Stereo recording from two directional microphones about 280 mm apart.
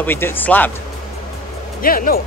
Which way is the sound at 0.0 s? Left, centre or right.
Centre.